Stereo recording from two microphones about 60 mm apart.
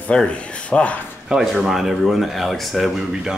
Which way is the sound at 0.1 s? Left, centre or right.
Centre.